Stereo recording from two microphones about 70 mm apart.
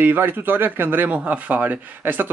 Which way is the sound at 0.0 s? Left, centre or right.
Right.